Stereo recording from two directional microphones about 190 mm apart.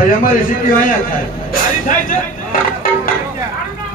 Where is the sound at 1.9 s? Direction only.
45° left (ahead or behind).